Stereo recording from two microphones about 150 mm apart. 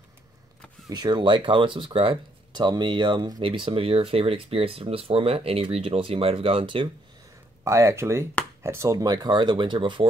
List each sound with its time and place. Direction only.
0.8 s speech: 30° right (ahead or behind)
7.6 s speech: 20° right (ahead or behind)